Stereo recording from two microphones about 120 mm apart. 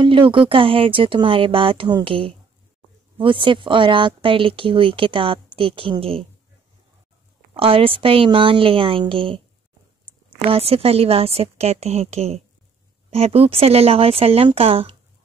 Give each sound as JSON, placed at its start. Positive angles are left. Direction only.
{"t": 0.0, "sound": "speech", "side_deg": -45}
{"t": 7.5, "sound": "speech", "side_deg": -50}
{"t": 10.4, "sound": "a woman's voice", "side_deg": -55}